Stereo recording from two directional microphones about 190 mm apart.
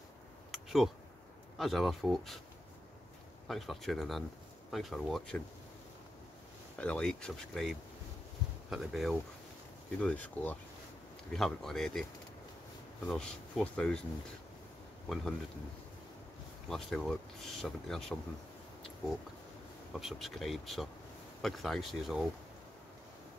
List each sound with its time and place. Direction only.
0.5 s a sound: centre (ahead or behind)
1.6 s speech: centre (ahead or behind)
3.4 s speech: centre (ahead or behind)
6.8 s speech: 5° left (ahead or behind)
16.6 s speech: centre (ahead or behind)
19.9 s speech: centre (ahead or behind)